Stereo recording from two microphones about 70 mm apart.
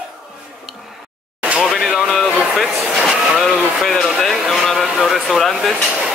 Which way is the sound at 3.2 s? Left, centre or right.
Centre.